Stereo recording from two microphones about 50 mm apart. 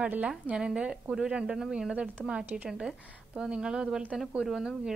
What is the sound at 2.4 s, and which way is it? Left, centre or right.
Speech, right.